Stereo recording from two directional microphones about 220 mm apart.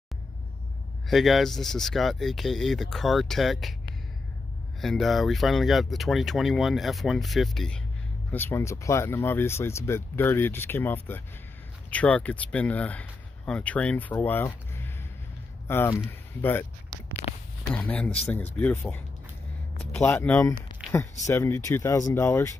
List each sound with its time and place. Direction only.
1.0 s speech: centre (ahead or behind)
4.8 s speech: centre (ahead or behind)
15.6 s speech: 10° left (ahead or behind)
17.7 s speech: 5° left (ahead or behind)